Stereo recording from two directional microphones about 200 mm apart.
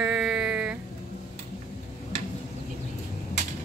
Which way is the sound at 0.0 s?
5° right (ahead or behind).